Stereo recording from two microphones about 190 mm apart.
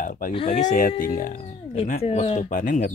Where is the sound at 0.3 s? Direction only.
30° left (ahead or behind); by 1.5 s 45° left (ahead or behind).